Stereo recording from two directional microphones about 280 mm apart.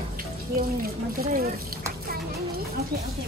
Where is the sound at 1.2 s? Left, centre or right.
Right.